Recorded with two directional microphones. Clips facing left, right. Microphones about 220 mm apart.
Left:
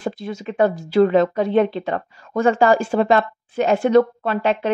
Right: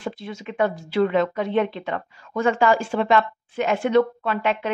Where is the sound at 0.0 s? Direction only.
40° left (ahead or behind).